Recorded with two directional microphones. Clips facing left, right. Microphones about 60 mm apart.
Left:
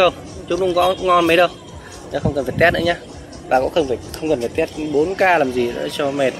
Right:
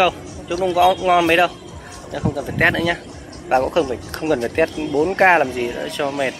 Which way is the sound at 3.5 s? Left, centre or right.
Right.